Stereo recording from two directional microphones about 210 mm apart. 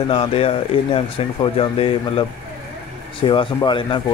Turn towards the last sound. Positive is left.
turn(degrees=20)  # may be behind; listen again after turning